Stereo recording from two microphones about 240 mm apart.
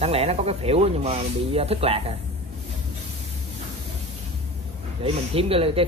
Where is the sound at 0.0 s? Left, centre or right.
Right.